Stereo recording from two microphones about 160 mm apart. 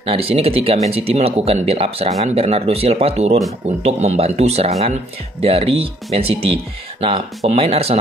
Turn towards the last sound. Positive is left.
turn(degrees=-40)  # may be behind; listen again after turning